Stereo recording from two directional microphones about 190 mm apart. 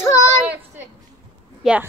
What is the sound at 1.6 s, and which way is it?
Speech, 5° right (ahead or behind).